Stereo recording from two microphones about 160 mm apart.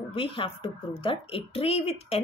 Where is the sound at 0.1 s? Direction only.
35° left (ahead or behind).